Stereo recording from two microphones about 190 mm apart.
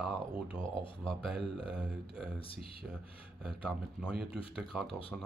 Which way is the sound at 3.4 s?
5° right (ahead or behind).